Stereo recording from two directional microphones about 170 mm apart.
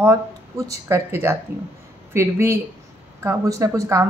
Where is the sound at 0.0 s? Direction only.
20° right (ahead or behind).